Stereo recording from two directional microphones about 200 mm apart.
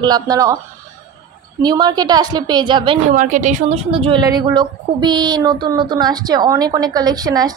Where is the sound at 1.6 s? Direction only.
20° right (ahead or behind).